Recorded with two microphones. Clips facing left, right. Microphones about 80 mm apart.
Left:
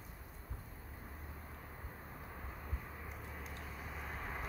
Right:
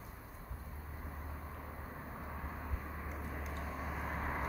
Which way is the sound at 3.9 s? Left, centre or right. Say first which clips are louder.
Right 5 dB; right.